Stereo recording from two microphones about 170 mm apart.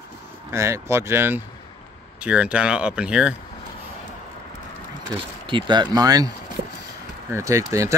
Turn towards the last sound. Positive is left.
turn(degrees=-20)  # may be behind; listen again after turning